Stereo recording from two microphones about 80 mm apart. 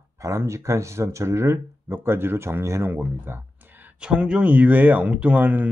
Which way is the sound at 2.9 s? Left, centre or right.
Right.